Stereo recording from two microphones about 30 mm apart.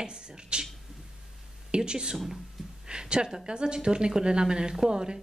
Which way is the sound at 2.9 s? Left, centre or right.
Right.